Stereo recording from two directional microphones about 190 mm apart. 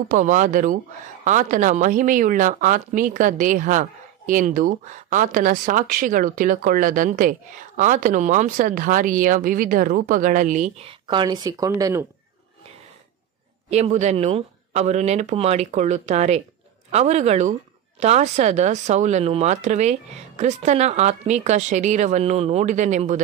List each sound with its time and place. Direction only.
0.1 s speech: 45° right (ahead or behind); by 12.1 s 15° right (ahead or behind)
13.7 s speech: 35° right (ahead or behind)